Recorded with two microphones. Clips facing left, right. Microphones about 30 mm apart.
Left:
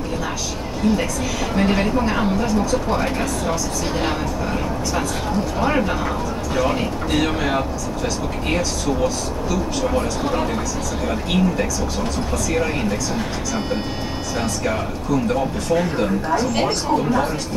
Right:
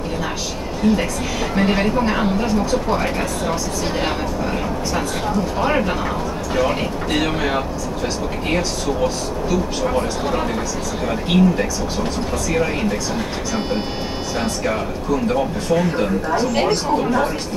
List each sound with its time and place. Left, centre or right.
0.8 s speech: centre
2.4 s speech: right
2.9 s speech: centre
5.6 s speech: centre
9.8 s speech: centre
15.7 s speech: centre